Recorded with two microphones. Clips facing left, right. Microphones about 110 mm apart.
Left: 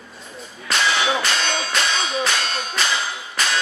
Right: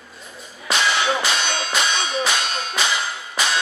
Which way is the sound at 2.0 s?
Centre (ahead or behind).